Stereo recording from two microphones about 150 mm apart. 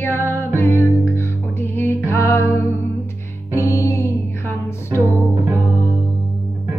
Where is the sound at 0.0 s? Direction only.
15° left (ahead or behind).